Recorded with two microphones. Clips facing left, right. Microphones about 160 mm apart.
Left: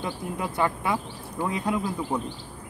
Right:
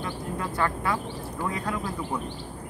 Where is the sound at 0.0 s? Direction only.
15° left (ahead or behind).